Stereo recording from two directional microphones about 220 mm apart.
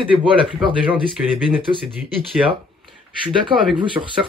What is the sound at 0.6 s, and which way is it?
Speech, 20° right (ahead or behind).